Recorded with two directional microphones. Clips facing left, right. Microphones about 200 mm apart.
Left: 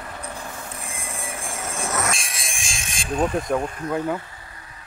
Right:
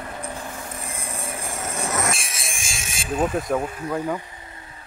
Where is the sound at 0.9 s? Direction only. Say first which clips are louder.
Right 1 dB; 40° right (ahead or behind).